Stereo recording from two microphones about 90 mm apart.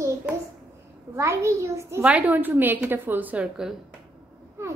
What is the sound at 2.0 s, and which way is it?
A woman's voice, 15° right (ahead or behind).